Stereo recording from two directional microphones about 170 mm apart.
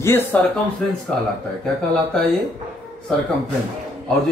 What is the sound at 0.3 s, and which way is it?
Speech, 10° left (ahead or behind).